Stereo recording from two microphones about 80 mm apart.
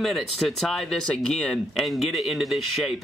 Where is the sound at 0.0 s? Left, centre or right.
Centre.